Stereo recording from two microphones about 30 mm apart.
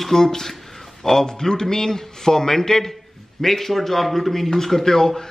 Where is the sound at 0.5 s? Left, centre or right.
Centre.